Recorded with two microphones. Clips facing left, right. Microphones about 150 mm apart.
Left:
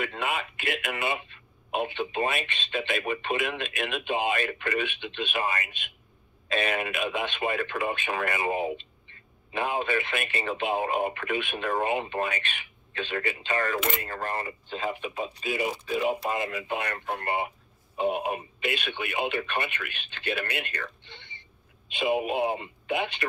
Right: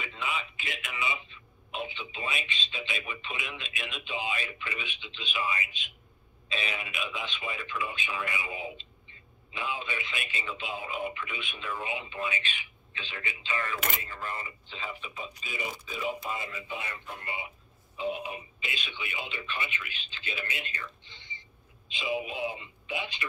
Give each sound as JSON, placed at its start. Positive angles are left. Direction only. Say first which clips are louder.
{"t": 0.0, "sound": "a man's voice", "louder": "left 6 dB", "side_deg": 60}